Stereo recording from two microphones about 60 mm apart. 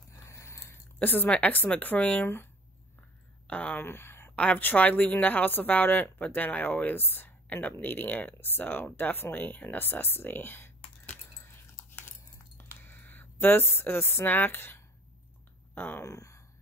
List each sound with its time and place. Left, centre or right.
0.3 s biting: left
0.9 s a woman's voice: left
3.4 s speech: left
3.8 s a sound: left
4.6 s speech: left
11.3 s dog: left
12.5 s a sound: left
14.2 s speech: left
16.0 s speech: left